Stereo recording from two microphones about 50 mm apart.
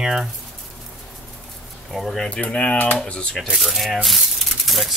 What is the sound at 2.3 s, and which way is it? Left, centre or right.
Speech, left.